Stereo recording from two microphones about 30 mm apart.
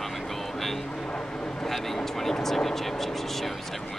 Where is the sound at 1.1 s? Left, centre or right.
Left.